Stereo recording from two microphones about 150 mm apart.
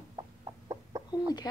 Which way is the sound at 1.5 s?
25° left (ahead or behind).